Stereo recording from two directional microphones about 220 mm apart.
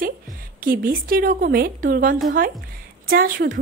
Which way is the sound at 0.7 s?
40° right (ahead or behind).